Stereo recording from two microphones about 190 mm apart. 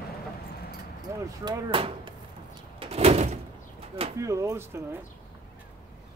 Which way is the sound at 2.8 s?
30° right (ahead or behind).